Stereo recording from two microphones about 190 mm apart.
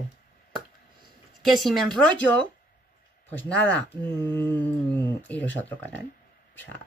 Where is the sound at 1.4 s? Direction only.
5° left (ahead or behind).